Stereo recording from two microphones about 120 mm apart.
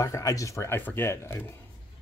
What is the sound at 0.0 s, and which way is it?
Speech, 30° left (ahead or behind).